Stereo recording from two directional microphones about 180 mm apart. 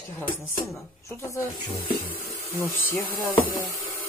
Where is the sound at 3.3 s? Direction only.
15° left (ahead or behind).